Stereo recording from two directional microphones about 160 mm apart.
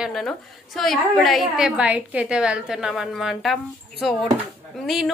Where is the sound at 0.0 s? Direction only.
Centre (ahead or behind).